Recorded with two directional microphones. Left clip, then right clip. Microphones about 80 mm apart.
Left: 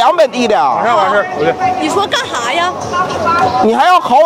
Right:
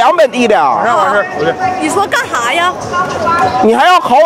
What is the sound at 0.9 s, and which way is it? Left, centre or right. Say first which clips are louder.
Speech: right 1 dB; left.